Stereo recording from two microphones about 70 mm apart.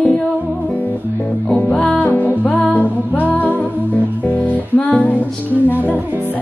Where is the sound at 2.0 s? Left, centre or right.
Left.